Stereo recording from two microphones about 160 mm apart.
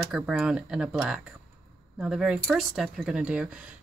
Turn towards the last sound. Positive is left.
turn(degrees=-5)  # may be behind; listen again after turning